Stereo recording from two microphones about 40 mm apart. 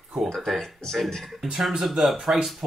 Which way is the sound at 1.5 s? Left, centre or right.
Centre.